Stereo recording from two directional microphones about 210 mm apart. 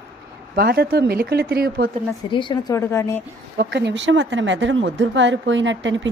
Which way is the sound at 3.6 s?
55° right (ahead or behind).